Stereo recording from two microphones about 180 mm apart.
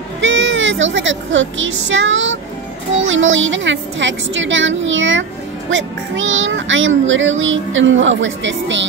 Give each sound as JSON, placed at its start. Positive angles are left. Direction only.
{"t": 0.2, "sound": "speech", "side_deg": -90}
{"t": 3.0, "sound": "child singing", "side_deg": -90}